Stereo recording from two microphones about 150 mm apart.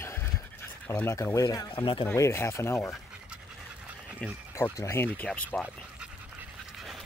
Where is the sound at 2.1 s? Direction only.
15° left (ahead or behind).